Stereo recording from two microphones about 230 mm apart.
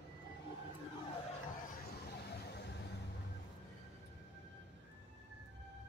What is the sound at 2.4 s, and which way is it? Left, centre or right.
Vehicle, left.